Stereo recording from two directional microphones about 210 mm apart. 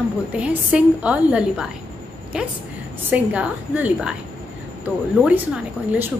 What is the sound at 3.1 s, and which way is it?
A woman's voice, 5° right (ahead or behind).